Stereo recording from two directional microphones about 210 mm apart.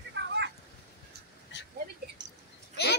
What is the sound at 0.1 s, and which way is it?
Vehicle, 55° right (ahead or behind).